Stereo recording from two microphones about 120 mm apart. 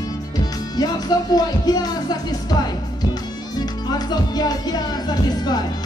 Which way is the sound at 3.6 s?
35° left (ahead or behind).